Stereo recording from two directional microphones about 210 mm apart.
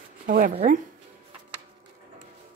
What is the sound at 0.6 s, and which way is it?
Speech, 40° right (ahead or behind).